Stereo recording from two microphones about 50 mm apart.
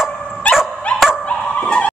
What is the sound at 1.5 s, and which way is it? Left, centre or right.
Dog, left.